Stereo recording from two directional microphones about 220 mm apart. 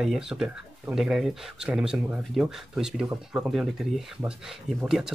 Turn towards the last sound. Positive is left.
turn(degrees=-5)  # may be behind; listen again after turning